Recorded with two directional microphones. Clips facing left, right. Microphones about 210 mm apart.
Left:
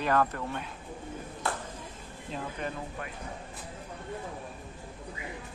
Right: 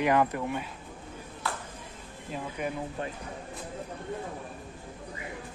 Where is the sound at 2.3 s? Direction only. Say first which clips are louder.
Right 2 dB; 10° right (ahead or behind).